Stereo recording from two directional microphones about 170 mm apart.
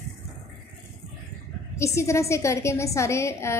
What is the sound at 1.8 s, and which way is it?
A woman's voice, 15° left (ahead or behind).